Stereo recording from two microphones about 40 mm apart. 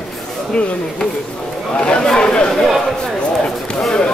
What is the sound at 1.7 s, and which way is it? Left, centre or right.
Chatter, left.